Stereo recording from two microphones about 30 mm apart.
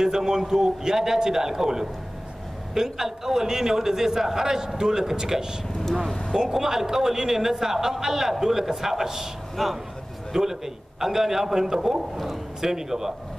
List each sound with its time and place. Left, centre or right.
0.0 s a man's voice: centre
6.5 s a man's voice: centre
9.6 s speech: centre
10.3 s a man's voice: centre